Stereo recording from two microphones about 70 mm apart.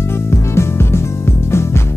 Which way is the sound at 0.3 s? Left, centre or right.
Left.